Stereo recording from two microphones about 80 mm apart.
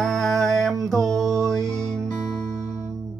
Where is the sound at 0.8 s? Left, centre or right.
Centre.